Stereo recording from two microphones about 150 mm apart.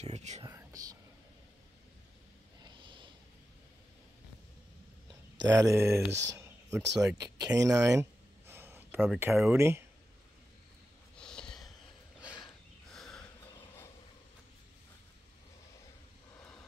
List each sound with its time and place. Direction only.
0.0 s speech: 50° right (ahead or behind)
0.6 s whispering: 25° right (ahead or behind)
2.6 s snort: 35° right (ahead or behind)
5.4 s speech: 20° right (ahead or behind)
7.2 s a sound: 20° right (ahead or behind)
9.3 s speech: 5° right (ahead or behind)
9.6 s speech: 15° right (ahead or behind)
11.1 s snort: 5° left (ahead or behind)
12.9 s a sound: 5° left (ahead or behind)